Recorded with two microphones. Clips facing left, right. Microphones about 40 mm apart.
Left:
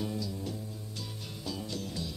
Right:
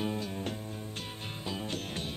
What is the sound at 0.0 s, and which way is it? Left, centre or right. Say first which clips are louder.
Music: right 2 dB; right.